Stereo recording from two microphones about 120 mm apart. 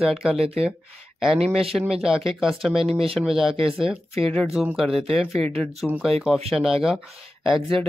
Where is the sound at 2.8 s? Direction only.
50° right (ahead or behind).